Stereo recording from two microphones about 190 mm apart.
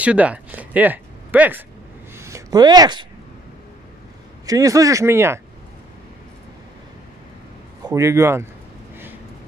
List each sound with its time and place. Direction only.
0.0 s speech: 5° right (ahead or behind)
2.1 s a sound: 15° right (ahead or behind)
4.5 s speech: 20° right (ahead or behind)
7.8 s speech: 15° right (ahead or behind)